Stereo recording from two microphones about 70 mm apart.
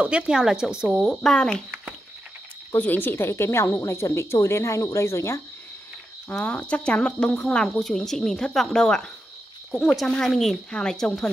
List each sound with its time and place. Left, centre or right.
0.0 s speech: right
0.3 s speech: centre
0.9 s speech: centre
2.7 s speech: left
6.4 s speech: centre
9.7 s speech: centre
10.0 s speech: centre